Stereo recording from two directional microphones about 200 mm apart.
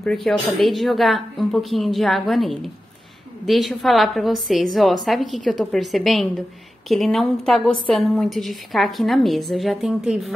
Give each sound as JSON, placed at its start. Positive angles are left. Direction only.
{"t": 0.0, "sound": "a woman's voice", "side_deg": 0}